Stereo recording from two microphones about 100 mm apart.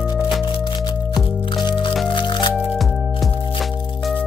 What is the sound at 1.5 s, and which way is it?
Music, 50° left (ahead or behind).